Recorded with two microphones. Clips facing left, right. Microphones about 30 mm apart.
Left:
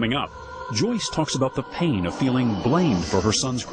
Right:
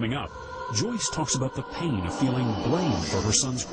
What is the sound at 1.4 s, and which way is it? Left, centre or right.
Speech, left.